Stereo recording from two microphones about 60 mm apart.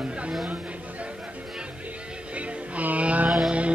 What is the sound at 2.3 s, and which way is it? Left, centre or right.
Music, right.